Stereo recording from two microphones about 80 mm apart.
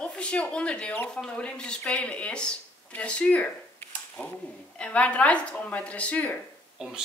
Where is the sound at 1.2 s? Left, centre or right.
Centre.